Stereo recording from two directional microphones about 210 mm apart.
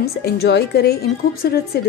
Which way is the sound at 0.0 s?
50° left (ahead or behind).